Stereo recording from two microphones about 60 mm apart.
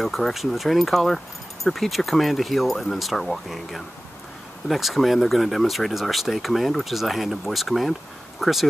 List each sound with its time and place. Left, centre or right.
0.0 s speech: centre